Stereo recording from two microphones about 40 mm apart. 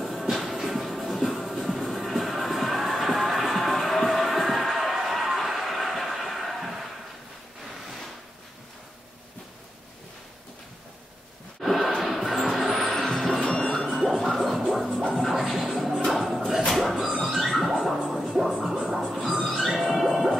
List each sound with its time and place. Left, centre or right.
0.0 s music: centre
11.6 s music: centre
13.4 s music: centre
14.0 s music: centre
14.7 s scratch: centre
15.1 s music: centre
16.1 s a sound: centre
18.1 s music: centre
19.6 s a sound: centre